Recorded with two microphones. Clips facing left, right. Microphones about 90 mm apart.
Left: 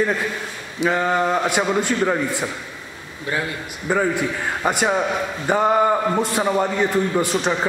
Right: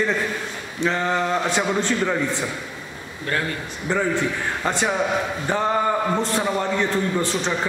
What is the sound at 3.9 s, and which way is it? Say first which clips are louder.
A man's voice: left 2 dB; 15° left (ahead or behind).